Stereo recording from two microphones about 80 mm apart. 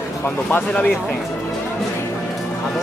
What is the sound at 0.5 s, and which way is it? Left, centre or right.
Speech, left.